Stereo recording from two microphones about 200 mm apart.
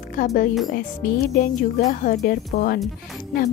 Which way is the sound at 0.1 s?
45° left (ahead or behind).